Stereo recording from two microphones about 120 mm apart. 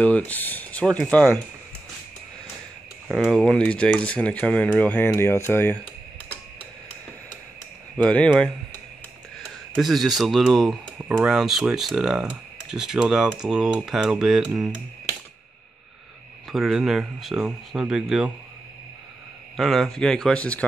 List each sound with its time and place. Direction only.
0.0 s speech: 10° left (ahead or behind)
3.3 s speech: 5° left (ahead or behind)
8.0 s speech: 10° left (ahead or behind)
9.4 s speech: centre (ahead or behind)
16.5 s speech: 5° right (ahead or behind)
19.5 s speech: centre (ahead or behind)